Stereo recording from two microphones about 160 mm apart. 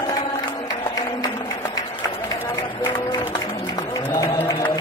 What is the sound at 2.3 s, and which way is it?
Music, 25° left (ahead or behind).